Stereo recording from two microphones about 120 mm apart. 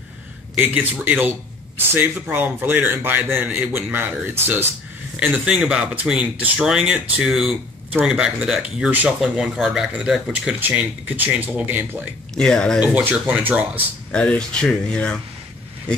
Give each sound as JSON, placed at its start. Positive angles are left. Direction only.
{"t": 0.6, "sound": "speech", "side_deg": -15}
{"t": 12.4, "sound": "speech", "side_deg": 5}
{"t": 12.8, "sound": "speech", "side_deg": -10}
{"t": 14.1, "sound": "speech", "side_deg": 10}